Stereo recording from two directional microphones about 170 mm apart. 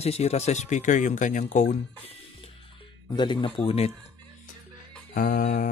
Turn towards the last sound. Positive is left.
turn(degrees=60)  # may be behind; listen again after turning